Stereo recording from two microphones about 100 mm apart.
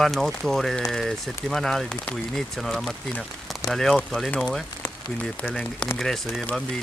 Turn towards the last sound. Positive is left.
turn(degrees=5)  # may be behind; listen again after turning